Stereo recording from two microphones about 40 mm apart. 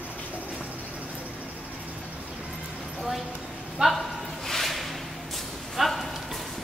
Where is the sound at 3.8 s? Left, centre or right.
Centre.